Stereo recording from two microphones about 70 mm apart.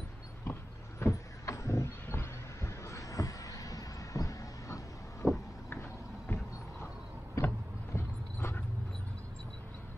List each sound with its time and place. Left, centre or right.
0.5 s vehicle: left
7.4 s vehicle: left
7.9 s clip-clop: left